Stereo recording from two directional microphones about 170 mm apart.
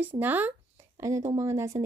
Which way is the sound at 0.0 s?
10° right (ahead or behind).